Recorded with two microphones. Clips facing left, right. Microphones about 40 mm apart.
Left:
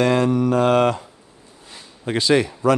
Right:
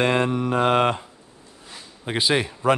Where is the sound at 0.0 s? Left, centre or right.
Right.